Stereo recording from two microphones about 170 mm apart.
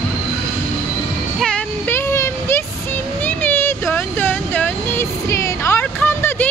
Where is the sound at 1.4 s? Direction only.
10° left (ahead or behind).